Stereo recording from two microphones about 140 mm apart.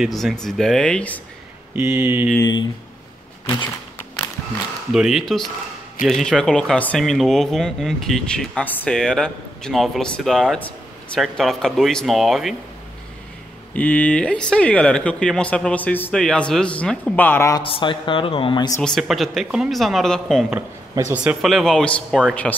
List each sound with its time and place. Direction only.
0.0 s speech: centre (ahead or behind)
1.8 s mantra: 15° right (ahead or behind)
4.9 s speech: 5° right (ahead or behind)
13.7 s speech: 10° left (ahead or behind)
17.6 s speech: 35° left (ahead or behind)
18.8 s speech: centre (ahead or behind)
21.1 s speech: 10° right (ahead or behind); by 22.5 s 5° left (ahead or behind)